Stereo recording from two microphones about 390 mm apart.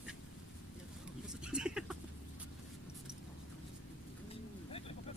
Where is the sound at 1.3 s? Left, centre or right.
Centre.